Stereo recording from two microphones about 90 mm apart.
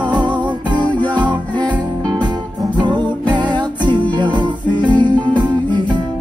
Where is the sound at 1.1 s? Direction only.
55° right (ahead or behind).